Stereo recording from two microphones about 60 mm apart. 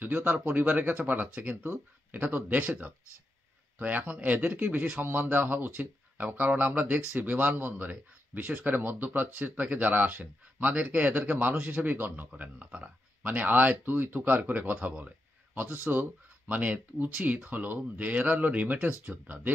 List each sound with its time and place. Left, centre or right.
0.0 s speech: right
3.7 s speech: right
15.6 s speech: right